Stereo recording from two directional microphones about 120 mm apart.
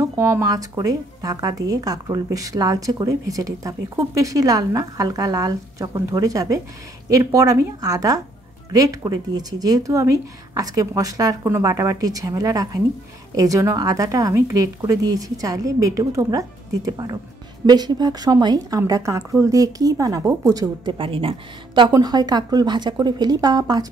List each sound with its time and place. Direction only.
0.0 s speech: 25° right (ahead or behind)